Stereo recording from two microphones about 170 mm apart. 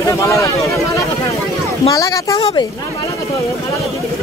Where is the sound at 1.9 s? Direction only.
20° left (ahead or behind).